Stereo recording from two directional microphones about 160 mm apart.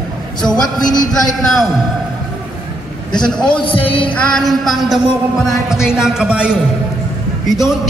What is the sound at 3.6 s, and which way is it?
Speech, 35° left (ahead or behind).